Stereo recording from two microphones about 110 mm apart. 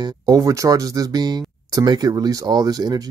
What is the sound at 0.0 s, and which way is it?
Speech, 30° right (ahead or behind).